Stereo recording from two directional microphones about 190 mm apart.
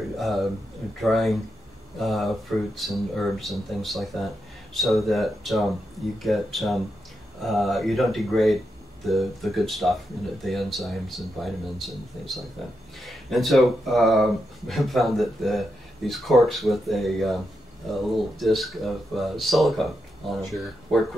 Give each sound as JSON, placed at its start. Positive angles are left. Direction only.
{"t": 0.2, "sound": "speech", "side_deg": 0}